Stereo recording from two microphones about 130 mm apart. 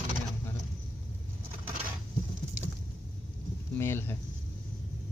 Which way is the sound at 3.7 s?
15° left (ahead or behind).